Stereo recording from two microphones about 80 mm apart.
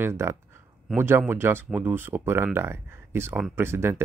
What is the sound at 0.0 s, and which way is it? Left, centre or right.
Speech, right.